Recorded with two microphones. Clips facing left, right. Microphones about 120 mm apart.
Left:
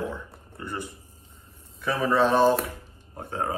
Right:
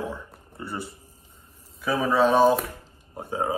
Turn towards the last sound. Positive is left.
turn(degrees=-10)  # may be behind; listen again after turning